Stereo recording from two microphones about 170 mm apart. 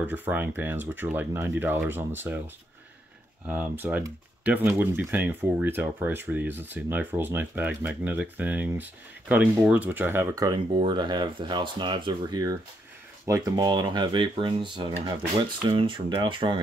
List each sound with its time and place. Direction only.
0.0 s speech: 10° right (ahead or behind)
3.4 s speech: 10° right (ahead or behind); by 16.6 s 30° right (ahead or behind)